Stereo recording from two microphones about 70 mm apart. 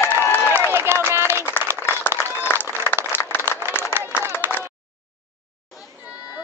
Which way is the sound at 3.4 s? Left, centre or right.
Right.